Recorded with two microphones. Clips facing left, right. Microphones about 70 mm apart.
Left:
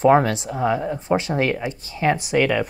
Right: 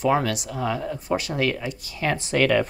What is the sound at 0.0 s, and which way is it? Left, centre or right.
Speech, left.